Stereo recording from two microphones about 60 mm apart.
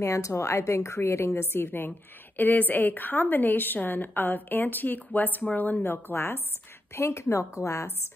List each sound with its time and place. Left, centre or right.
0.0 s a woman's voice: left
7.0 s a woman's voice: left